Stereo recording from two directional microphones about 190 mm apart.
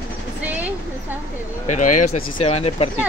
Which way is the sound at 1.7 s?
40° left (ahead or behind).